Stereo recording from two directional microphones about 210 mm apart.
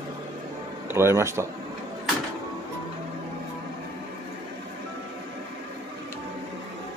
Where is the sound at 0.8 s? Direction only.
10° right (ahead or behind).